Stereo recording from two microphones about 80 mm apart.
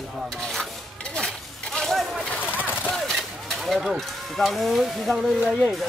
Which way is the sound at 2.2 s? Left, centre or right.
Left.